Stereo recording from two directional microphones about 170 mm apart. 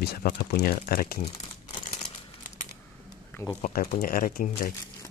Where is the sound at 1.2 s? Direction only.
35° left (ahead or behind).